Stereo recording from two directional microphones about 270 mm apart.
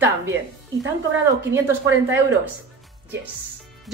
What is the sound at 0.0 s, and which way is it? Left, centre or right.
Speech, centre.